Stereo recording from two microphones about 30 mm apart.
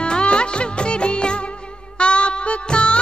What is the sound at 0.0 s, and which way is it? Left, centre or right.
Music, left.